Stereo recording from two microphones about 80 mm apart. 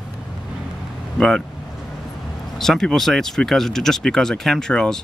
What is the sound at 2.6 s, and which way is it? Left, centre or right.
Speech, centre.